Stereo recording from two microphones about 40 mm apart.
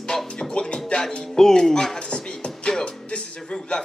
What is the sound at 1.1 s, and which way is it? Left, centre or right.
Speech, centre.